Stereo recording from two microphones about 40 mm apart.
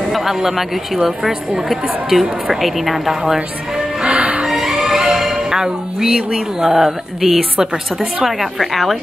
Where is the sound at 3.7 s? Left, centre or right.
Centre.